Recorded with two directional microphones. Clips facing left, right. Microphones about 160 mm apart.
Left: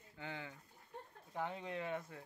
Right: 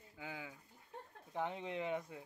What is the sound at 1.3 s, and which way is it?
Speech, 20° right (ahead or behind).